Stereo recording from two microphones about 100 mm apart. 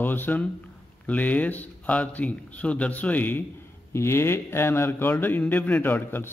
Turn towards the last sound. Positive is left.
turn(degrees=20)  # may be behind; listen again after turning